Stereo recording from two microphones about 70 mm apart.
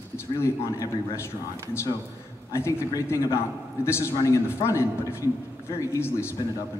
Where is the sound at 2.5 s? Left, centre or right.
Left.